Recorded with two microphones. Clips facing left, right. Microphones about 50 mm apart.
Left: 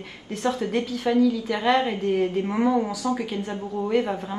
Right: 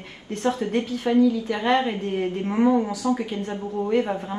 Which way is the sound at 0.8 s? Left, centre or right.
Centre.